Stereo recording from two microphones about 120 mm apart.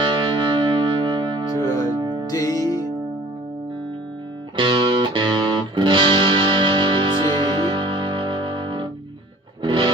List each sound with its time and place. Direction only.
0.0 s music: 40° right (ahead or behind)
1.5 s music: 25° left (ahead or behind)
2.0 s music: 40° right (ahead or behind)
2.2 s music: 30° left (ahead or behind)
4.6 s music: 40° right (ahead or behind)